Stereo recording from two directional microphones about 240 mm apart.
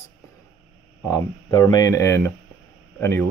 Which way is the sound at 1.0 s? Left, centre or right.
Centre.